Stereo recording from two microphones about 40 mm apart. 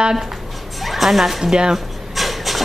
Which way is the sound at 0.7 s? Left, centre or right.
Centre.